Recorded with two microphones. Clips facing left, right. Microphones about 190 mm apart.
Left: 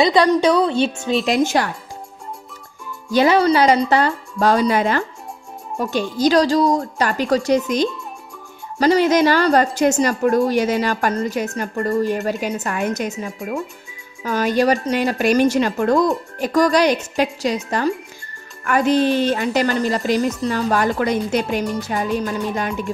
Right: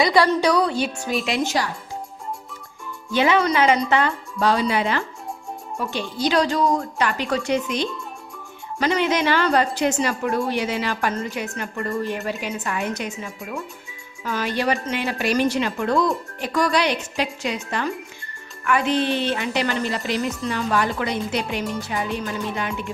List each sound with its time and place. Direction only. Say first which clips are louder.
0.0 s a woman's voice: left 3 dB; 20° left (ahead or behind)
1.2 s a woman's voice: left 6 dB; 45° left (ahead or behind)
3.1 s a woman's voice: left 5 dB; 40° left (ahead or behind)